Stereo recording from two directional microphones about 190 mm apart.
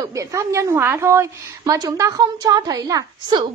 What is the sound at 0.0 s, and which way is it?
A woman's voice, 15° right (ahead or behind).